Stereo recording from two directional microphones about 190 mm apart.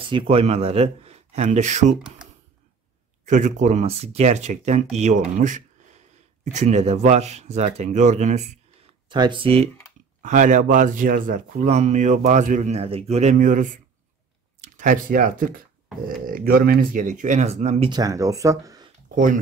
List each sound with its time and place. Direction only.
0.0 s speech: 30° right (ahead or behind)
2.2 s computer keyboard: 5° right (ahead or behind)
3.3 s speech: 40° right (ahead or behind)
9.1 s speech: 25° right (ahead or behind)
10.2 s speech: 40° right (ahead or behind); by 18.9 s 20° right (ahead or behind)